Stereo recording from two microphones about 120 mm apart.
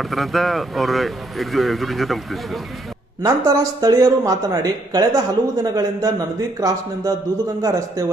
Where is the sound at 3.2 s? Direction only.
30° right (ahead or behind).